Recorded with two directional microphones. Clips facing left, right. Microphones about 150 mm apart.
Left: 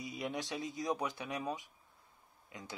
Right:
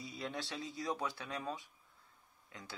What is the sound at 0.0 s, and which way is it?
Speech, 20° left (ahead or behind).